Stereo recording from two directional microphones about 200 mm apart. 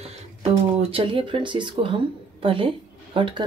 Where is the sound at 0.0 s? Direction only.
30° right (ahead or behind).